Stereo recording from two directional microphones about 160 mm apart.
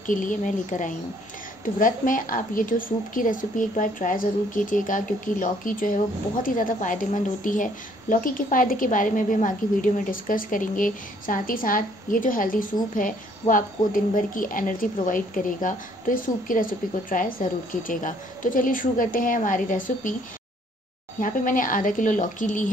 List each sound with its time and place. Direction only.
0.0 s a woman's voice: 55° left (ahead or behind)
21.2 s a woman's voice: 60° left (ahead or behind)